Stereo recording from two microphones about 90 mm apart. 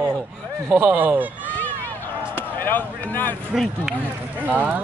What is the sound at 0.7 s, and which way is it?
Speech, 20° right (ahead or behind).